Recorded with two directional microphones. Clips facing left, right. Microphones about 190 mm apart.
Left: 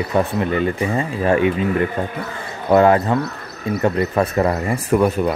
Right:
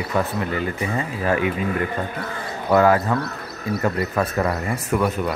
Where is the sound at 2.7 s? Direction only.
25° left (ahead or behind).